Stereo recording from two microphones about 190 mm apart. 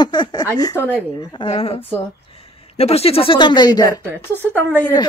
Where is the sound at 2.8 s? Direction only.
30° left (ahead or behind).